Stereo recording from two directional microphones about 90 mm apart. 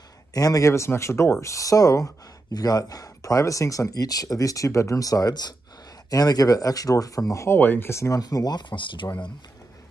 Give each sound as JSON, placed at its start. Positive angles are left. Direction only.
{"t": 0.3, "sound": "speech", "side_deg": 45}
{"t": 7.5, "sound": "speech", "side_deg": 20}
{"t": 8.2, "sound": "speech", "side_deg": 45}